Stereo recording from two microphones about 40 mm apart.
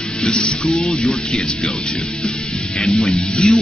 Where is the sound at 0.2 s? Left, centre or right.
Left.